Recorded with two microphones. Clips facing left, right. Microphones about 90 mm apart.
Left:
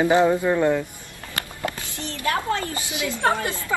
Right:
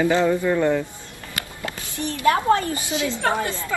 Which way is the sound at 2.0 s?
20° right (ahead or behind).